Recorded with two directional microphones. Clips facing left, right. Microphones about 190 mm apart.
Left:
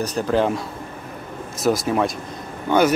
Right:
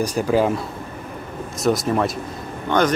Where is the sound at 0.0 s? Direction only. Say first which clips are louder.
Right 1 dB; 10° right (ahead or behind).